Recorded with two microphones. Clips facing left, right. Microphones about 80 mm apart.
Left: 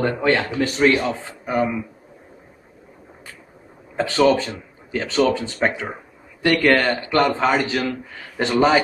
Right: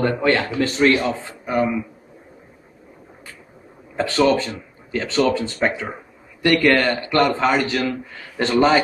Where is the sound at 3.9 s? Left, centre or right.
Left.